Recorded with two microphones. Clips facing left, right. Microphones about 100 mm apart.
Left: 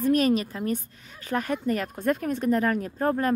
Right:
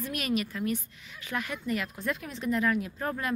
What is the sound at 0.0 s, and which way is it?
Speech, 40° left (ahead or behind).